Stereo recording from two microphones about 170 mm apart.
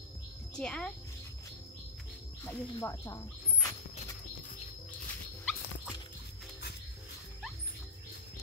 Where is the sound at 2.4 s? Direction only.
20° left (ahead or behind).